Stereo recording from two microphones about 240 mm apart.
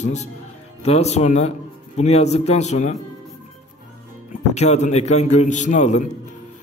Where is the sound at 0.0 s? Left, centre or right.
Left.